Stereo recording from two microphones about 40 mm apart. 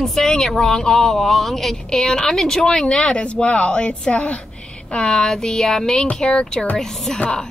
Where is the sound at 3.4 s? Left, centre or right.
Left.